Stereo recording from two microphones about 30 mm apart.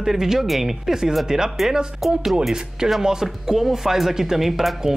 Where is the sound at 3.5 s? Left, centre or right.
Centre.